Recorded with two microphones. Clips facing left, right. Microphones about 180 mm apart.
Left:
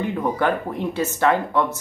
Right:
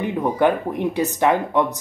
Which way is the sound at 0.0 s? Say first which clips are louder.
Right 3 dB; 15° right (ahead or behind).